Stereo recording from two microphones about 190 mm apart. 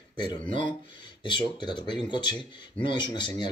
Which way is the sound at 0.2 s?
25° left (ahead or behind).